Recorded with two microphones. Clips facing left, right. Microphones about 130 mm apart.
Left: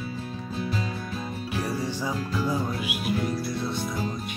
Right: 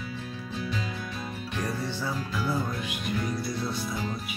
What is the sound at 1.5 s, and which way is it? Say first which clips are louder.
Music: left 3 dB; 10° left (ahead or behind).